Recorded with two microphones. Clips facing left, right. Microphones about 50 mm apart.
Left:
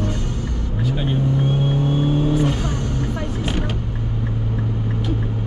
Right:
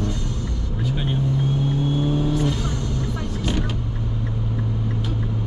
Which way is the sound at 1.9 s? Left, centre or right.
Left.